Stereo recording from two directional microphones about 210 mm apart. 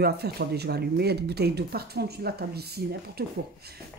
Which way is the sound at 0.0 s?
50° right (ahead or behind).